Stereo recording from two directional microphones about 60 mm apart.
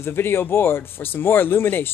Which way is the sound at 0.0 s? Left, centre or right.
Left.